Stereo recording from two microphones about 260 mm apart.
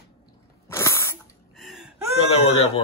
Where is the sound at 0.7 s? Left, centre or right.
Centre.